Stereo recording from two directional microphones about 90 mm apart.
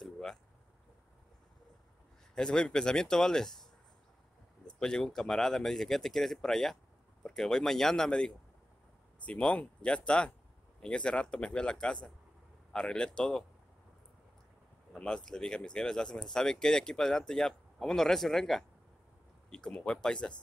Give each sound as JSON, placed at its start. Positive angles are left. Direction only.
{"t": 0.0, "sound": "a sound", "side_deg": 5}
{"t": 2.3, "sound": "speech", "side_deg": 5}
{"t": 4.6, "sound": "speech", "side_deg": 10}
{"t": 14.9, "sound": "speech", "side_deg": 10}